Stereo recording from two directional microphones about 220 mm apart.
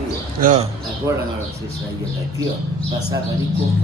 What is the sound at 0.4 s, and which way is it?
Speech, 35° right (ahead or behind).